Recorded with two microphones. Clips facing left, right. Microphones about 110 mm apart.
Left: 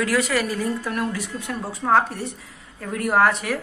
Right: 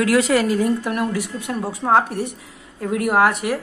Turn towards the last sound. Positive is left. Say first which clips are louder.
# right 2 dB
turn(degrees=-10)  # may be behind; listen again after turning